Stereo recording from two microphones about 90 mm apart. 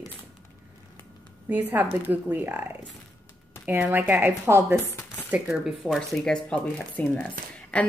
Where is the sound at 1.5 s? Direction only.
20° right (ahead or behind).